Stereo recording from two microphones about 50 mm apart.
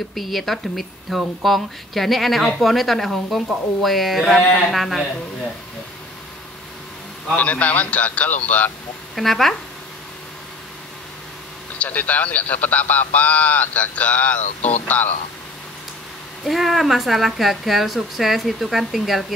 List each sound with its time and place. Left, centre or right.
0.1 s a woman's voice: centre
7.3 s speech: left
9.1 s a woman's voice: centre
11.8 s speech: left
16.4 s a woman's voice: centre